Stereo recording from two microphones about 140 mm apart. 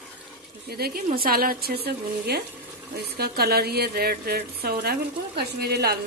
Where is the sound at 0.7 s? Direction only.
90° right.